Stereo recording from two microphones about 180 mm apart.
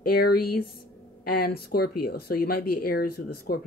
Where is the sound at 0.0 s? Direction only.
60° left (ahead or behind).